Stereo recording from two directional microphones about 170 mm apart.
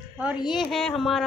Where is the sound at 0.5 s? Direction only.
Centre (ahead or behind).